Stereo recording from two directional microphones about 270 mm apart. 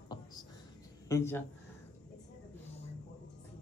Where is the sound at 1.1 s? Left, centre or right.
Centre.